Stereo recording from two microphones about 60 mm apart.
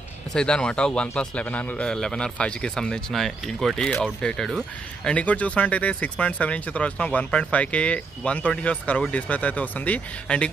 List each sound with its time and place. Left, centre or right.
0.3 s speech: centre
1.9 s speech: centre
5.0 s speech: left